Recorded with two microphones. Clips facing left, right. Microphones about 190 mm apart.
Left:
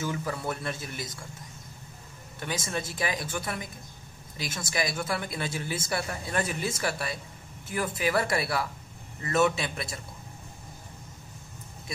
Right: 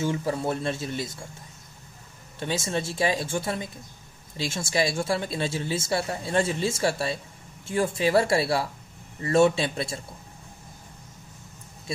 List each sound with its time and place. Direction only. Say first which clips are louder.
0.0 s a woman's voice: right 5 dB; 30° right (ahead or behind)
2.4 s a woman's voice: right 5 dB; 25° right (ahead or behind)